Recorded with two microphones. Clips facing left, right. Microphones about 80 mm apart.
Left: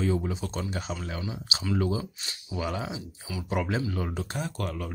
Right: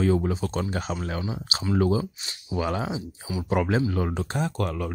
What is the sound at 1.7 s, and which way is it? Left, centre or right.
Speech, right.